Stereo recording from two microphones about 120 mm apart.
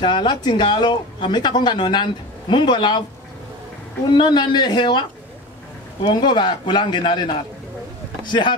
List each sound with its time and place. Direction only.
0.0 s speech: 40° left (ahead or behind)
4.1 s speech: 40° left (ahead or behind)
6.1 s speech: 40° left (ahead or behind)